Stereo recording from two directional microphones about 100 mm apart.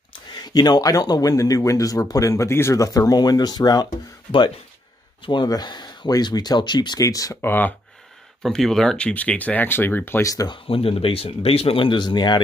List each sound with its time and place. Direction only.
0.3 s speech: 45° left (ahead or behind)
5.2 s speech: 50° left (ahead or behind); by 7.3 s 35° left (ahead or behind)
7.4 s speech: 20° left (ahead or behind)
8.4 s speech: 5° left (ahead or behind); by 10.2 s 20° left (ahead or behind)
10.2 s speech: 35° left (ahead or behind)
10.5 s speech: 65° left (ahead or behind); by 12.4 s 45° left (ahead or behind)